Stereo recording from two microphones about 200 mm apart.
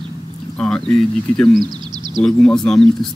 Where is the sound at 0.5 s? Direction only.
5° left (ahead or behind).